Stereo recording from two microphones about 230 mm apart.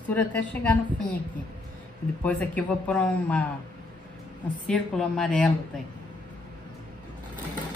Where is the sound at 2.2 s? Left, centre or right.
Centre.